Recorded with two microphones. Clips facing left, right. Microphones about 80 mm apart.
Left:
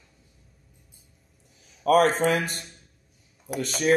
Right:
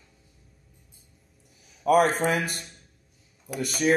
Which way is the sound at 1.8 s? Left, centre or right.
Centre.